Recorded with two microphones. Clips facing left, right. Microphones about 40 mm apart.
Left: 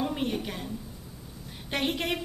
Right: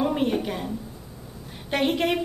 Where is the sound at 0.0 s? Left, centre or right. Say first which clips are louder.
Right 6 dB; centre.